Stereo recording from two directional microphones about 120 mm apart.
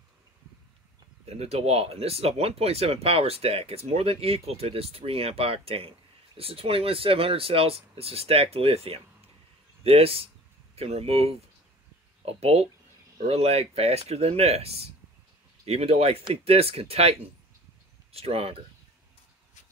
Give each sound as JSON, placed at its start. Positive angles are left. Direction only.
{"t": 1.2, "sound": "speech", "side_deg": -60}